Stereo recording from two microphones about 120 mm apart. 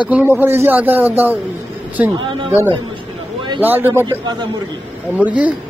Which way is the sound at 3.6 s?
15° right (ahead or behind).